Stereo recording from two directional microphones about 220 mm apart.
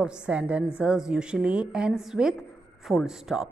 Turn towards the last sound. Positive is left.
turn(degrees=0)  # may be behind; listen again after turning